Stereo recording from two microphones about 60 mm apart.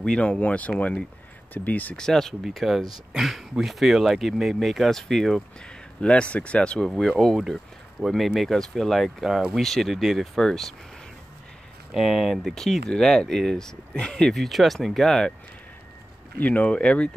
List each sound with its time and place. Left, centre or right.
0.2 s speech: left
2.0 s speech: centre
2.4 s speech: centre
5.9 s speech: centre
7.3 s speech: centre
11.9 s speech: centre
16.3 s speech: left